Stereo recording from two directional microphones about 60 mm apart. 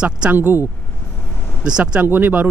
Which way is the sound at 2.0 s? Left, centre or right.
Right.